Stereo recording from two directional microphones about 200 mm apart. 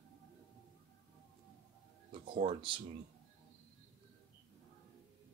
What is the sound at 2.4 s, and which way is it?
Speech, 25° right (ahead or behind).